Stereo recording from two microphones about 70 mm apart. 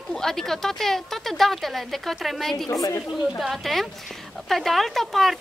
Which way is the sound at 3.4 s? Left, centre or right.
Centre.